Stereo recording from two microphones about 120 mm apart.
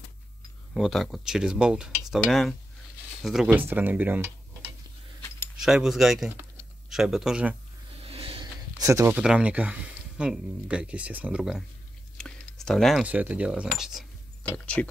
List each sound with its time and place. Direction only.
0.7 s speech: centre (ahead or behind)
3.5 s speech: 15° right (ahead or behind)
5.6 s speech: 5° right (ahead or behind)
8.0 s a sound: 50° right (ahead or behind)
8.7 s speech: 25° right (ahead or behind)
9.1 s speech: 10° right (ahead or behind)
12.2 s a sound: 5° left (ahead or behind)
13.0 s speech: 15° right (ahead or behind)
14.5 s speech: 10° left (ahead or behind)